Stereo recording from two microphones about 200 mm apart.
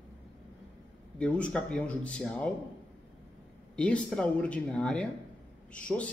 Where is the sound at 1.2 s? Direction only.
5° left (ahead or behind).